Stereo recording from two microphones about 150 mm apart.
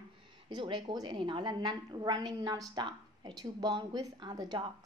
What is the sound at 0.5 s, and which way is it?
Speech, 30° right (ahead or behind).